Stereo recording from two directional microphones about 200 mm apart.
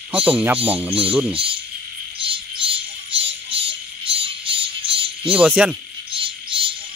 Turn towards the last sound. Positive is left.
turn(degrees=-25)  # may be behind; listen again after turning